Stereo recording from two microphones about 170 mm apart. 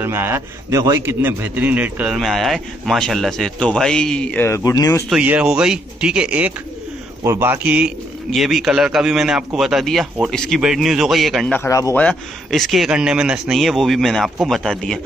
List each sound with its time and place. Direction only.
0.0 s a man's voice: 15° right (ahead or behind); by 4.5 s 5° left (ahead or behind)
4.5 s speech: 20° left (ahead or behind)
5.1 s a man's voice: 10° right (ahead or behind)
11.6 s speech: 15° left (ahead or behind)
12.0 s a man's voice: 5° left (ahead or behind)